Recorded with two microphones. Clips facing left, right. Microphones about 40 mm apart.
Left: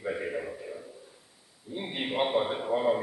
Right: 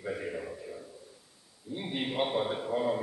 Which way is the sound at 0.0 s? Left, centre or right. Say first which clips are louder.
Left 3 dB; centre.